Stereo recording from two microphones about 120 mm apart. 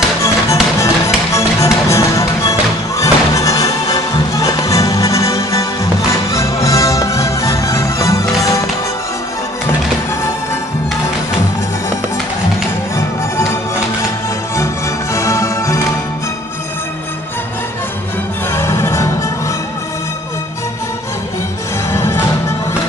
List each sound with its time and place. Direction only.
0.2 s music: 25° left (ahead or behind)
15.1 s music: 25° left (ahead or behind)
18.5 s music: 25° left (ahead or behind)
21.9 s music: 25° left (ahead or behind)